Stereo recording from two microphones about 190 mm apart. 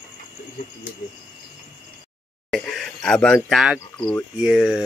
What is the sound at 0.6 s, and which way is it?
Cricket, 50° left (ahead or behind).